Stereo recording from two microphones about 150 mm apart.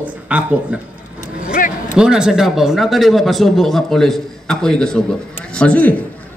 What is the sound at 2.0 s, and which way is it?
A man's voice, 5° right (ahead or behind).